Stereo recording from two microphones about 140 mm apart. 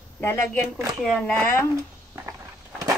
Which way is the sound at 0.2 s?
15° left (ahead or behind).